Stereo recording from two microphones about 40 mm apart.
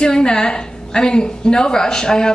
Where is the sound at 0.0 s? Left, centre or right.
Centre.